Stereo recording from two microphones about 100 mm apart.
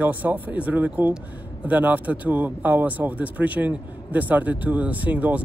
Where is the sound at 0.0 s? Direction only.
15° right (ahead or behind).